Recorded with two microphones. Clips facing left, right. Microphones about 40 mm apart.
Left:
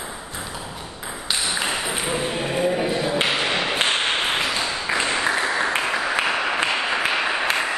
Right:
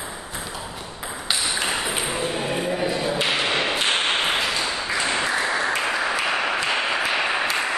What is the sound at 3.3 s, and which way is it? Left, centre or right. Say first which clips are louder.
Thump: even; centre.